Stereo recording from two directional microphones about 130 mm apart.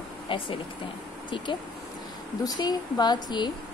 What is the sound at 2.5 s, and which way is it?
A woman's voice, 30° left (ahead or behind).